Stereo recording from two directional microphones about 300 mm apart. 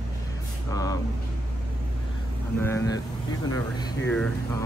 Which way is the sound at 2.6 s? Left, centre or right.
Centre.